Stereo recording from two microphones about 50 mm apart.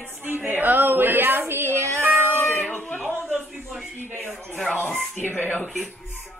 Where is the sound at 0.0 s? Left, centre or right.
Right.